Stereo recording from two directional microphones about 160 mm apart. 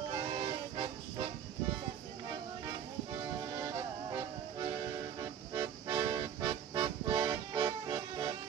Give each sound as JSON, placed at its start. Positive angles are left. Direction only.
{"t": 0.1, "sound": "vehicle", "side_deg": -25}
{"t": 2.6, "sound": "music", "side_deg": -20}